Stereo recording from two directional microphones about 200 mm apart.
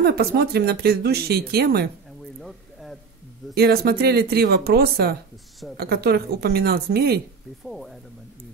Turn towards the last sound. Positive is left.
turn(degrees=0)  # may be behind; listen again after turning